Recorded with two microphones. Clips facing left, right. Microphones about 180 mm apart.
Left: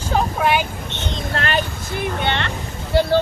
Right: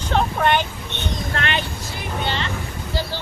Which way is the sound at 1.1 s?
35° left (ahead or behind).